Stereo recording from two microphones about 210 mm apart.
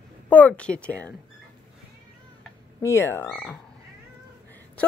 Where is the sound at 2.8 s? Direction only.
10° left (ahead or behind).